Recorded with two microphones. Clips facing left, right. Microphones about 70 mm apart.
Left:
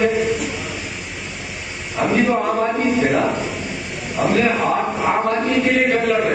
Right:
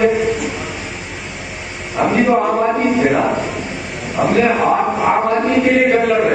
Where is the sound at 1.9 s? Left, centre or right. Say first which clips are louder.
Right 4 dB; centre.